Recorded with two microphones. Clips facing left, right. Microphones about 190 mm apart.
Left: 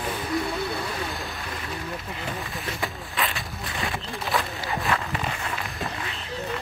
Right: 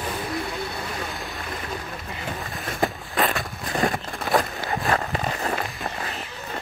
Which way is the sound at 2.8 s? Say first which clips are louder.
Right 8 dB; 50° right (ahead or behind).